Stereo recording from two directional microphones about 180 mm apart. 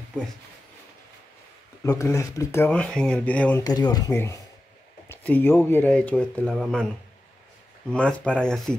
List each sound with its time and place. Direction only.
1.9 s speech: 15° left (ahead or behind)
3.6 s speech: 20° left (ahead or behind); by 6.9 s centre (ahead or behind)
7.9 s speech: 5° left (ahead or behind)